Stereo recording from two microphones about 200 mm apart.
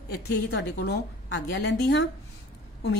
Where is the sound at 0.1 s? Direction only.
55° left (ahead or behind).